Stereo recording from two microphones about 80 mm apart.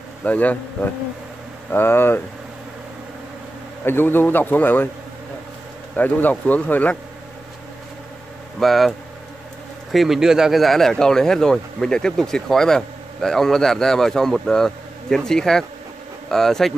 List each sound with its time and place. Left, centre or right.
0.2 s a man's voice: centre
3.8 s a man's voice: left
5.9 s a man's voice: centre
8.5 s a man's voice: centre
9.9 s a man's voice: centre